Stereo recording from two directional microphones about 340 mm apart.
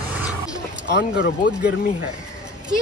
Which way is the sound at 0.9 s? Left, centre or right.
Left.